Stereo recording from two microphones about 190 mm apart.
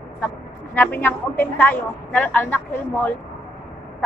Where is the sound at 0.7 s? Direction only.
10° left (ahead or behind).